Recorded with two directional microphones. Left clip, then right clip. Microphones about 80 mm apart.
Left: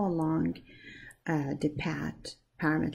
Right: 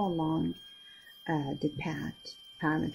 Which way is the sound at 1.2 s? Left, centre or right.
Left.